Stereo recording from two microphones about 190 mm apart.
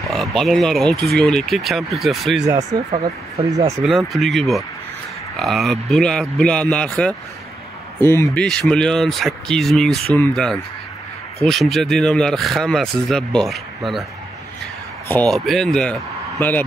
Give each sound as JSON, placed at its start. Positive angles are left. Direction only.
{"t": 0.0, "sound": "speech", "side_deg": 0}
{"t": 2.4, "sound": "speech", "side_deg": -15}
{"t": 3.8, "sound": "speech", "side_deg": 0}
{"t": 15.0, "sound": "a man's voice", "side_deg": 5}